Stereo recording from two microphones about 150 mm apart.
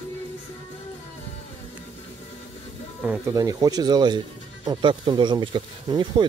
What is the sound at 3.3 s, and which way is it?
Speech, 25° right (ahead or behind).